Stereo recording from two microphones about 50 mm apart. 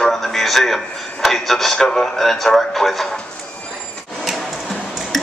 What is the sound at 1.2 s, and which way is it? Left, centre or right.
Speech, centre.